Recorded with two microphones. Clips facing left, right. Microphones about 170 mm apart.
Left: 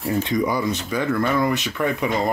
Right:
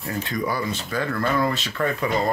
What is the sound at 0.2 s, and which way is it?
Speech, 20° left (ahead or behind).